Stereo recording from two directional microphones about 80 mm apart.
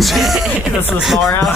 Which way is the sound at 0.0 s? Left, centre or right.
Centre.